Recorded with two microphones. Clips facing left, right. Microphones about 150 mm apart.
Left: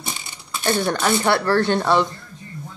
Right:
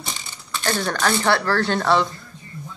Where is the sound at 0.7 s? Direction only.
20° left (ahead or behind).